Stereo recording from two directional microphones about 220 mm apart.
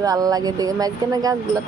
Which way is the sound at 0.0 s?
15° right (ahead or behind).